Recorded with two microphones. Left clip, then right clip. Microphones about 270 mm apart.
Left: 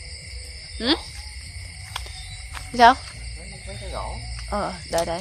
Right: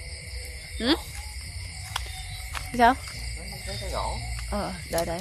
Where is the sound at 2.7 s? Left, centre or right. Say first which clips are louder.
Left 6 dB; left.